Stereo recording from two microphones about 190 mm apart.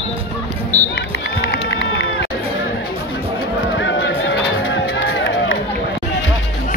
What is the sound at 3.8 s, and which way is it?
Music, 70° left (ahead or behind).